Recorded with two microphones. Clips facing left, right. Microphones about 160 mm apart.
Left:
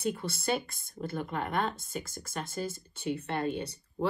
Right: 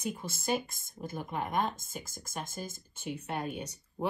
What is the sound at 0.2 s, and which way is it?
Speech, 5° right (ahead or behind).